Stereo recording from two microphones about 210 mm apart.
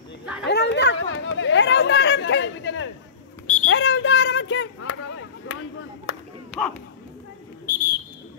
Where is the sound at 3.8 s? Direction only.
55° left (ahead or behind).